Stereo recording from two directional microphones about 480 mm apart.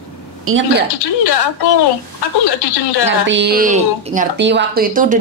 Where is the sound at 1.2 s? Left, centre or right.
Left.